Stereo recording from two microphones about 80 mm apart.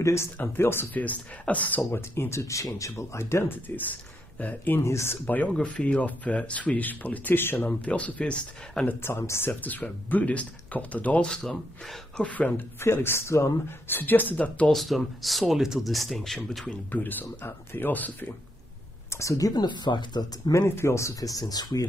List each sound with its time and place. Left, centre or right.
0.0 s speech: left; by 2.0 s centre
2.0 s speech: left
4.8 s speech: left
5.2 s speech: centre
9.0 s speech: left
11.2 s speech: centre
12.3 s speech: centre
12.8 s speech: left
14.7 s speech: centre
16.9 s speech: left
19.0 s speech: left
20.5 s speech: left
21.4 s speech: left